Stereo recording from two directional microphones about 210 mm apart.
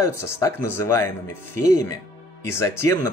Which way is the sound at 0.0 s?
15° left (ahead or behind).